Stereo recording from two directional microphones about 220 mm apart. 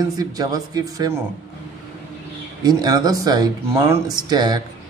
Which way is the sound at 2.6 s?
15° right (ahead or behind).